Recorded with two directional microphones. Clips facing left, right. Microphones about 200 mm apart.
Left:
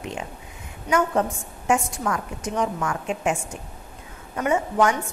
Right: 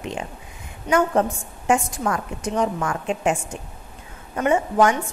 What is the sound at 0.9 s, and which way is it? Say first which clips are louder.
A woman's voice: right 3 dB; 30° right (ahead or behind).